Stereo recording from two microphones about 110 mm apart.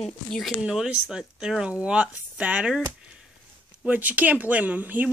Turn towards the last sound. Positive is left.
turn(degrees=-15)  # may be behind; listen again after turning